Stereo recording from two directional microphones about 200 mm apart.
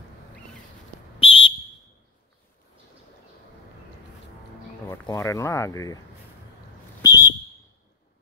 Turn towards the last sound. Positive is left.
turn(degrees=15)  # may be behind; listen again after turning